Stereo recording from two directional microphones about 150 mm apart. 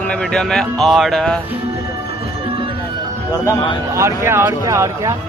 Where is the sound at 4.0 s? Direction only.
20° right (ahead or behind).